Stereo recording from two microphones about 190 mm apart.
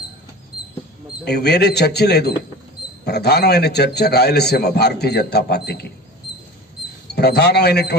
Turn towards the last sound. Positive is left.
turn(degrees=60)  # may be behind; listen again after turning